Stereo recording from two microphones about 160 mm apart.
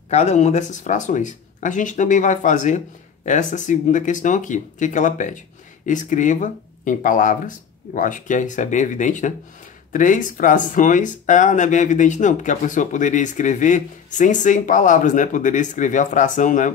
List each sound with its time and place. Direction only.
0.1 s speech: 45° left (ahead or behind)